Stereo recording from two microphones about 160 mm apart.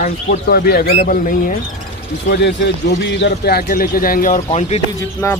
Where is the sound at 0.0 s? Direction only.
65° left (ahead or behind).